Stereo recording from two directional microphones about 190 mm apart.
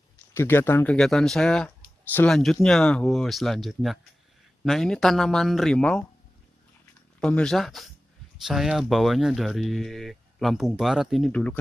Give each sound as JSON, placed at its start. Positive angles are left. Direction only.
{"t": 0.3, "sound": "speech", "side_deg": 10}
{"t": 7.2, "sound": "speech", "side_deg": 5}